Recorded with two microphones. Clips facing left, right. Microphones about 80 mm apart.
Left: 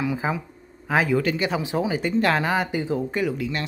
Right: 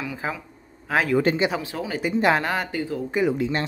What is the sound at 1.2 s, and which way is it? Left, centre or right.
Speech, right.